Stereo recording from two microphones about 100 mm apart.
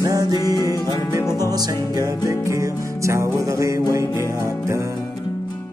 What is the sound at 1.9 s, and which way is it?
Music, 40° right (ahead or behind).